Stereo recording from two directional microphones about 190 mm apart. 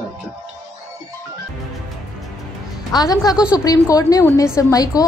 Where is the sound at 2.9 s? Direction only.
20° left (ahead or behind).